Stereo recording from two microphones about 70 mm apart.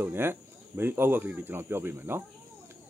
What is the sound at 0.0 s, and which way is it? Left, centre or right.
Speech, right.